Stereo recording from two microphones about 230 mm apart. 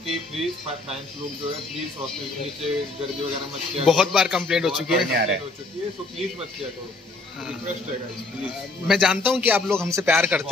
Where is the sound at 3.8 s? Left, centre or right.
Centre.